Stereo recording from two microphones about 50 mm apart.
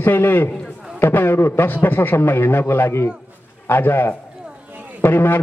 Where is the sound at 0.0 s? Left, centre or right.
Left.